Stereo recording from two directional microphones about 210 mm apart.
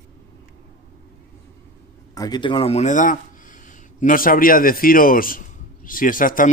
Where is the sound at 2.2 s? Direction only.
20° left (ahead or behind).